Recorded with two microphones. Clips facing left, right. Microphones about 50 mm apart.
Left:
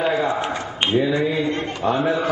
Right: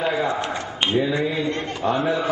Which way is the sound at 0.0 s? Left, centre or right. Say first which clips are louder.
Left 2 dB; centre.